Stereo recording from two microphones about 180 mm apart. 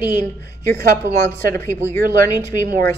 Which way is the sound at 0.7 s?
15° left (ahead or behind).